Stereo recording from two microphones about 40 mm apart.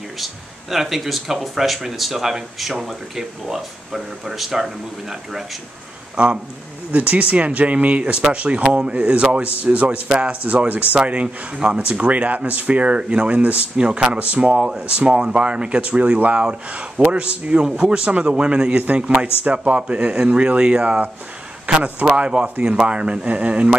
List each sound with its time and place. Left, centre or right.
0.2 s speech: centre
6.1 s speech: right
6.9 s speech: right
10.0 s speech: right
10.7 s speech: right
11.0 s speech: right
21.7 s speech: right